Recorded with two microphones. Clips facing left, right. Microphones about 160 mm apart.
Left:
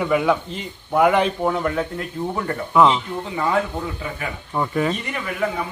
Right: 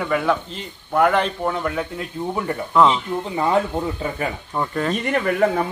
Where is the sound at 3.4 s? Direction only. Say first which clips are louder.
Right 2 dB; 25° right (ahead or behind).